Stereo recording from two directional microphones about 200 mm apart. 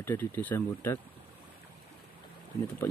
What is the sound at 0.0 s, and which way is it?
Speech, 10° left (ahead or behind).